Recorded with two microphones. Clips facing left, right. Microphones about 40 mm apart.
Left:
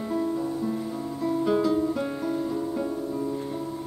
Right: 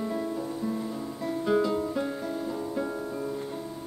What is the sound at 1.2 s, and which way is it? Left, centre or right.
Guitar, centre.